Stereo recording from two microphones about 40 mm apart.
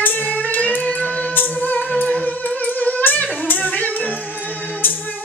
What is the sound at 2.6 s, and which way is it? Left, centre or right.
Music, left.